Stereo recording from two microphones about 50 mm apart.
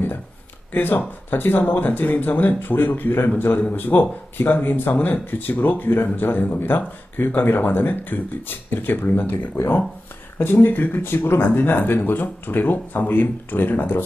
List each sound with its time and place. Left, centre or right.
0.7 s speech: left